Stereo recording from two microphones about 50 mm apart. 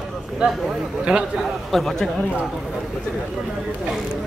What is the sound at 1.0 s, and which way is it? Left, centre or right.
Speech, centre.